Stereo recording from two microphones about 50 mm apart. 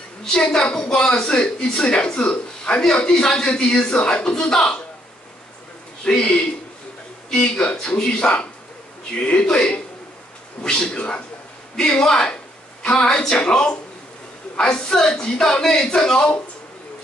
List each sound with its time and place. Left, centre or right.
0.2 s a woman's voice: centre
6.0 s a woman's voice: centre
7.2 s a woman's voice: centre